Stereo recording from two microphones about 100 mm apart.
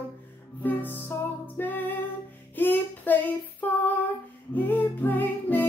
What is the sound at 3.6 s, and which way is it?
Female singing, 20° left (ahead or behind).